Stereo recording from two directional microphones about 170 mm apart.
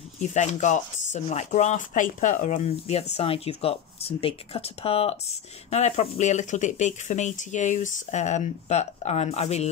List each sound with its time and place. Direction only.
0.3 s speech: 45° left (ahead or behind)